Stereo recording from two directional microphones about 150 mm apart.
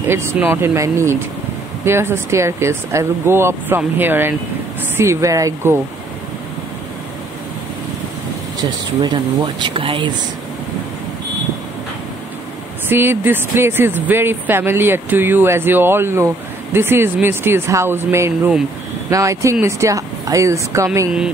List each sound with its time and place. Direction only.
0.1 s speech: 15° right (ahead or behind)
8.5 s speech: 30° right (ahead or behind)
12.8 s speech: 15° right (ahead or behind)